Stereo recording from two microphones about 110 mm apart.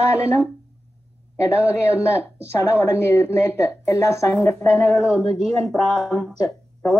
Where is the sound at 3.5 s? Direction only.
25° left (ahead or behind).